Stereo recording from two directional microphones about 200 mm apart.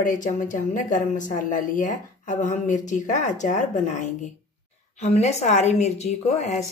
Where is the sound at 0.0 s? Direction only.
40° left (ahead or behind).